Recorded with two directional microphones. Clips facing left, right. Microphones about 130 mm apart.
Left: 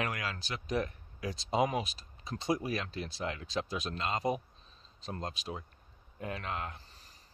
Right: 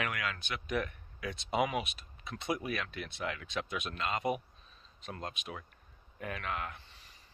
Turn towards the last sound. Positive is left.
turn(degrees=40)  # may be behind; listen again after turning